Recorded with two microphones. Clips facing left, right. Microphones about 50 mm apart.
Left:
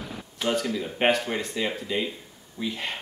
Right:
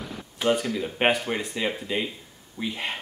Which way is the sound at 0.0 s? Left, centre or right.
Centre.